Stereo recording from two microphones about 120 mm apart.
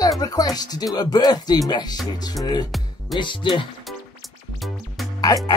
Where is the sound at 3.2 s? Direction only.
40° left (ahead or behind).